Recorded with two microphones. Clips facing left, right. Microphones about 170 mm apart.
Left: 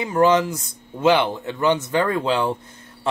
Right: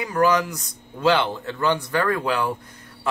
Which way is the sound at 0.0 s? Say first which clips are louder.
Left 3 dB; 25° left (ahead or behind).